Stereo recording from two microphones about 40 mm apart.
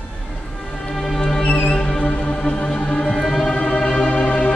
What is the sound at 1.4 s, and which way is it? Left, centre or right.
Music, left.